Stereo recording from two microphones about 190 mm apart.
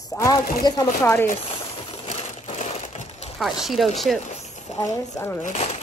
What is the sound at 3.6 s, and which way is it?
Speech, centre (ahead or behind).